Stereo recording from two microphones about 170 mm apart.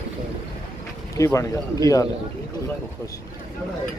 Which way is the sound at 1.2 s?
20° left (ahead or behind).